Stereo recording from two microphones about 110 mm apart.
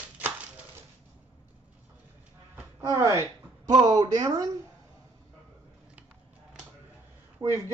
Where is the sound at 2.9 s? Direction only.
25° right (ahead or behind).